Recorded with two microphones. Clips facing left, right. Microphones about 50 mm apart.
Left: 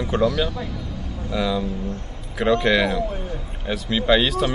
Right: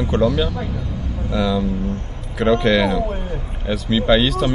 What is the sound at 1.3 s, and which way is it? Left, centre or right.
Speech, centre.